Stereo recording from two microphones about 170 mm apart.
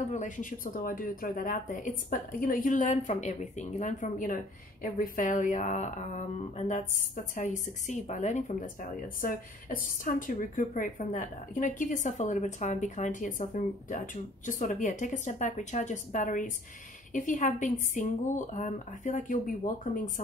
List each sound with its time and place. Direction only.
0.1 s a woman's voice: 50° left (ahead or behind)